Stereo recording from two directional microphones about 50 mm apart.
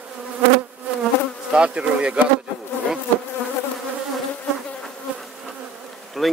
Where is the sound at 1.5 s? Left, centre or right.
Right.